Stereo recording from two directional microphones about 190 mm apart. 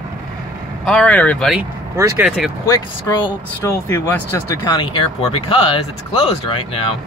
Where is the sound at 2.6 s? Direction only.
20° left (ahead or behind).